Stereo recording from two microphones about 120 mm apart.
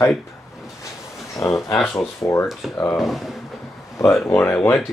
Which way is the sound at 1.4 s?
25° left (ahead or behind).